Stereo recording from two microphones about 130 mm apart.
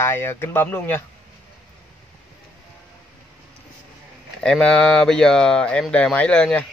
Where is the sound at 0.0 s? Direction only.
20° left (ahead or behind).